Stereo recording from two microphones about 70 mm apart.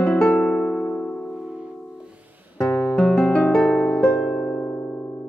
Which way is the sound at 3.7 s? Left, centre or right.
Centre.